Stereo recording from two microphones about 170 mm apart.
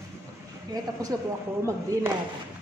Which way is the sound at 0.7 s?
20° right (ahead or behind).